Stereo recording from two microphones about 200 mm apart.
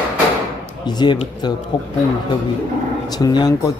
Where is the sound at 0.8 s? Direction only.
20° left (ahead or behind).